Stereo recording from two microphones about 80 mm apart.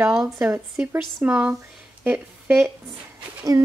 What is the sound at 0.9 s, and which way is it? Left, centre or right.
Speech, centre.